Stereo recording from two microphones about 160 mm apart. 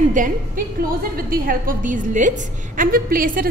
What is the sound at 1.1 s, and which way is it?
A woman's voice, 65° right (ahead or behind).